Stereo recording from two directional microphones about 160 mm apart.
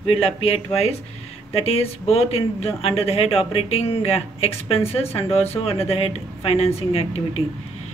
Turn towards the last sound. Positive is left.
turn(degrees=40)  # may be behind; listen again after turning